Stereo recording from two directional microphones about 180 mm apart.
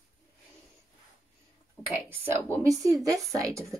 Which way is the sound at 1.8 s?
20° left (ahead or behind).